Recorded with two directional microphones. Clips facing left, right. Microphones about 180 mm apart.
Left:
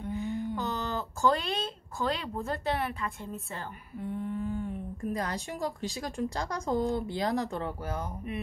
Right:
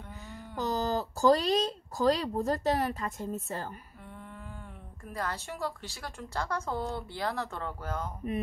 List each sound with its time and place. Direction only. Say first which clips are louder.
0.1 s a sound: left 15 dB; 40° right (ahead or behind)
0.6 s speech: right 3 dB; 40° right (ahead or behind)
4.1 s speech: left 13 dB; 20° left (ahead or behind)